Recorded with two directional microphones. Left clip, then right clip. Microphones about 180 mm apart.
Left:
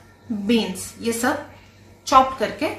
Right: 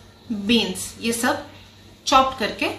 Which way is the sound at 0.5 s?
15° left (ahead or behind).